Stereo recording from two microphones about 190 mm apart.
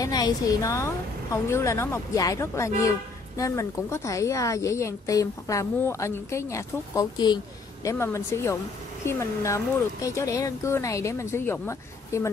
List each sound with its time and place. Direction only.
0.0 s a woman's voice: 20° left (ahead or behind)